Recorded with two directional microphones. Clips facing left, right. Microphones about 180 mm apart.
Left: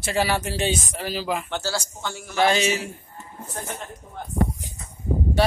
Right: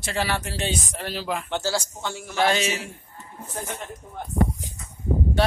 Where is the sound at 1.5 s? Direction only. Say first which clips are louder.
Right 2 dB; 25° right (ahead or behind).